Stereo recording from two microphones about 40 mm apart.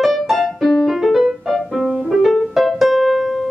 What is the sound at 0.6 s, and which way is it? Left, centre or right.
Keyboard, centre.